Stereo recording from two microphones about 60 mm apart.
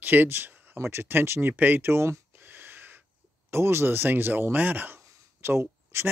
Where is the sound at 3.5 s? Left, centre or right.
Right.